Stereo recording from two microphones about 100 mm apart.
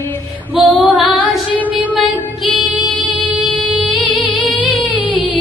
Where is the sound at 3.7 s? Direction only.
10° right (ahead or behind).